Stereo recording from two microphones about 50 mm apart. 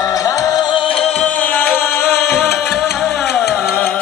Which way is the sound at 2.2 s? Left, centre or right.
Centre.